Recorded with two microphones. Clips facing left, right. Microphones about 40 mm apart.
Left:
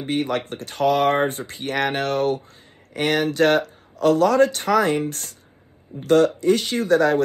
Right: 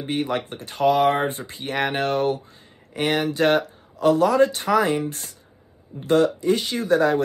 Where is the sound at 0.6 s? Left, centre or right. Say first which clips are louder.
Right 1 dB; right.